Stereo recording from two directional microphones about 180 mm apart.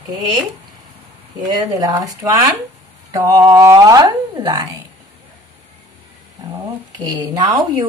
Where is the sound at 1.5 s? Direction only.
20° right (ahead or behind).